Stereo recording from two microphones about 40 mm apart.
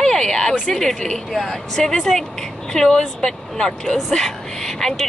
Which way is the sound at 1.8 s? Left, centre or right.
Centre.